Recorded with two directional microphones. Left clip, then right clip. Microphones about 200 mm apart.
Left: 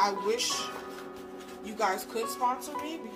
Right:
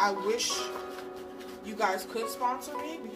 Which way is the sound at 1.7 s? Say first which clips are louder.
Even; 20° left (ahead or behind).